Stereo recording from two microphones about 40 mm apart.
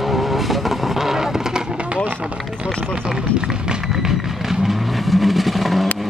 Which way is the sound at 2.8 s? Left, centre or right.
Centre.